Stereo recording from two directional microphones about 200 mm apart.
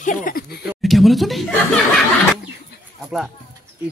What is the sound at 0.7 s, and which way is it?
Chuckle, centre (ahead or behind).